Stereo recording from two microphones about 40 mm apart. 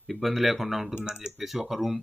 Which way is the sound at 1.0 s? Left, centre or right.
Right.